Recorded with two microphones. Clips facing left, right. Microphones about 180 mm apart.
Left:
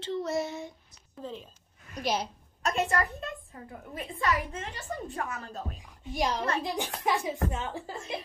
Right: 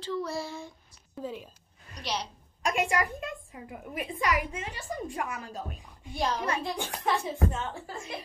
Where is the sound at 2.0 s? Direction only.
50° left (ahead or behind).